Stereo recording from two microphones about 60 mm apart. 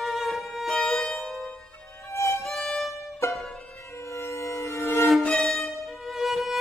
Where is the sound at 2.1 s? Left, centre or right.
Left.